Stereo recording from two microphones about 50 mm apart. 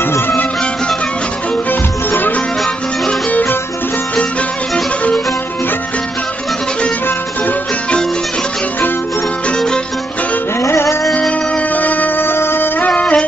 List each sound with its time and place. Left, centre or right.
1.7 s music: left
10.6 s music: left
11.1 s music: left
12.2 s music: left
12.8 s music: left